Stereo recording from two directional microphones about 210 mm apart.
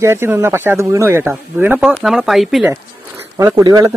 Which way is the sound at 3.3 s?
15° right (ahead or behind).